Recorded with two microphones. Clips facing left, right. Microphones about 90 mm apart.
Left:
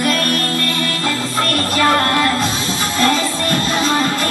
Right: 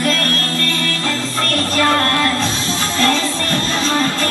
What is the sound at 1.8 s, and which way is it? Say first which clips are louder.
Music: left 1 dB; 15° left (ahead or behind).